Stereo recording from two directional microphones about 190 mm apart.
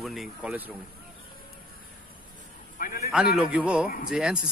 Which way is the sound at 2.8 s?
50° left (ahead or behind).